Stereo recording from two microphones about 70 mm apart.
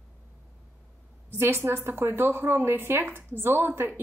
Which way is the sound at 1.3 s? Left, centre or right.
Right.